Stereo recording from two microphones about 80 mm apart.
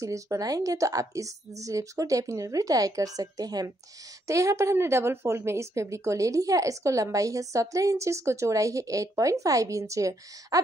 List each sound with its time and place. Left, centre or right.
0.0 s speech: right
4.3 s speech: right